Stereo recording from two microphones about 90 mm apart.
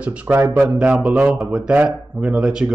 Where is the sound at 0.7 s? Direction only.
10° right (ahead or behind).